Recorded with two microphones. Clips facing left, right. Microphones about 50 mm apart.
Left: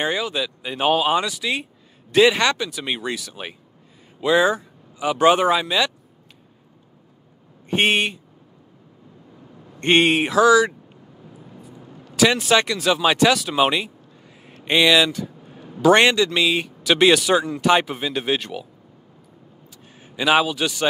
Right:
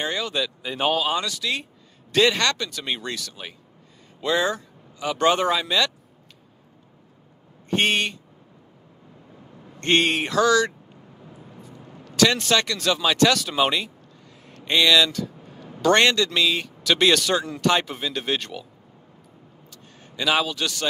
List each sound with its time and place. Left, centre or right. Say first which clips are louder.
0.0 s speech: left 3 dB; centre
7.7 s speech: left 3 dB; centre
9.8 s speech: left 4 dB; centre
11.6 s vehicle: left 1 dB; centre
12.0 s speech: left 2 dB; centre
14.4 s a sound: left 3 dB; centre
15.9 s speech: left 3 dB; centre
20.0 s a sound: left 3 dB; centre
20.2 s speech: left 5 dB; centre